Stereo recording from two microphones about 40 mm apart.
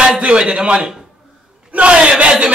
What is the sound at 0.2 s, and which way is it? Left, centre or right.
A man's voice, right.